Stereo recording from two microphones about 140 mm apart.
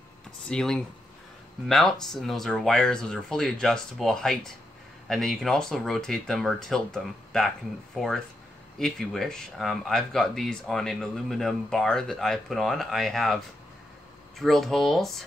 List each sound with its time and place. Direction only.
0.5 s speech: 5° left (ahead or behind)
14.4 s speech: centre (ahead or behind)